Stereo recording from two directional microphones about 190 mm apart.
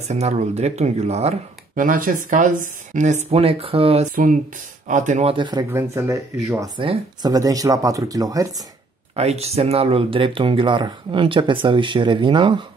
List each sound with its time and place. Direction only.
0.1 s speech: 35° right (ahead or behind)
1.8 s speech: 45° right (ahead or behind); by 8.6 s 20° right (ahead or behind)
9.1 s speech: 35° right (ahead or behind)